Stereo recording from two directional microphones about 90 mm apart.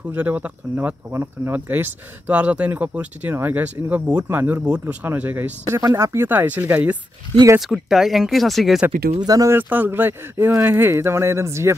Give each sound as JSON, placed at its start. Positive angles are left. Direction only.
{"t": 0.1, "sound": "speech", "side_deg": -20}
{"t": 5.8, "sound": "speech", "side_deg": -40}
{"t": 6.1, "sound": "speech", "side_deg": -20}
{"t": 7.6, "sound": "speech", "side_deg": -5}
{"t": 9.2, "sound": "speech", "side_deg": -45}
{"t": 9.5, "sound": "speech", "side_deg": -20}